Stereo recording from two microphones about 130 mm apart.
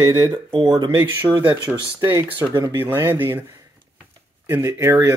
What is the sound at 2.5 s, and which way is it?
Speech, 35° right (ahead or behind).